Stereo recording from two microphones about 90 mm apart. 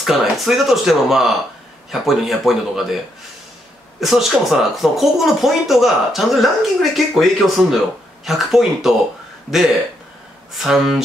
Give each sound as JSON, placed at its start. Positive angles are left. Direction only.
{"t": 0.0, "sound": "speech", "side_deg": -5}
{"t": 4.0, "sound": "speech", "side_deg": 0}
{"t": 10.6, "sound": "speech", "side_deg": -5}